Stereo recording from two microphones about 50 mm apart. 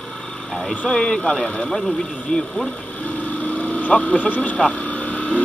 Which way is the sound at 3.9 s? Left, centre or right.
Left.